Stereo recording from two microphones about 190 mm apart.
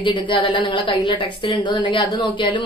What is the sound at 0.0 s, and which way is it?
A woman's voice, 25° left (ahead or behind).